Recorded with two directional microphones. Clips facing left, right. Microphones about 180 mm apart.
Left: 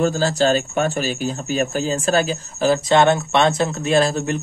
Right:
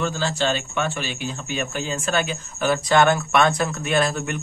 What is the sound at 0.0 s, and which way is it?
Speech, 40° left (ahead or behind).